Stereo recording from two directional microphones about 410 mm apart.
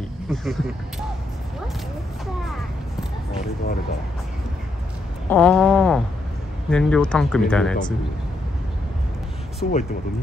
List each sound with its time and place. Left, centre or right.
0.3 s speech: centre
5.3 s speech: centre
9.6 s speech: centre